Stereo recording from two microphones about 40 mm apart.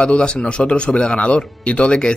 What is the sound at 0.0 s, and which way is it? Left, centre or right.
Speech, left.